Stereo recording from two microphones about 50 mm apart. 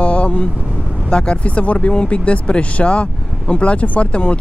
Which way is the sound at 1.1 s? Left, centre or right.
Centre.